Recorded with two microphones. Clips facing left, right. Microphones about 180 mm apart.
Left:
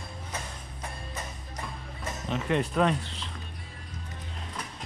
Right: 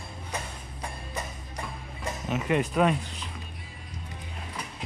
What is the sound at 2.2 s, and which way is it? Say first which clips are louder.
Speech: right 1 dB; 10° right (ahead or behind).